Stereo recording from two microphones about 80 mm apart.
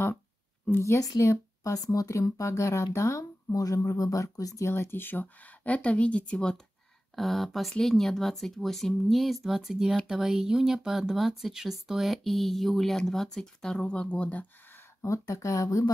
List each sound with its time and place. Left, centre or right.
0.7 s speech: left
4.6 s speech: left; by 14.4 s centre
14.7 s a sound: left
15.2 s speech: left